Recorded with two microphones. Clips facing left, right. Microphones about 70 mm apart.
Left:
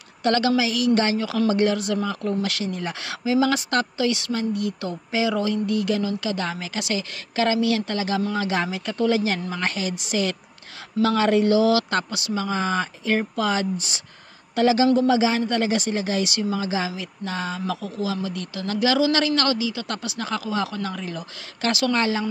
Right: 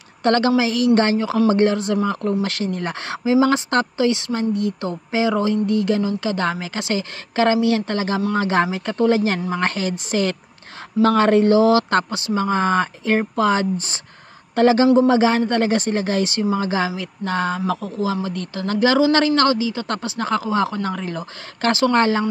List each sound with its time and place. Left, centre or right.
0.2 s a man's voice: right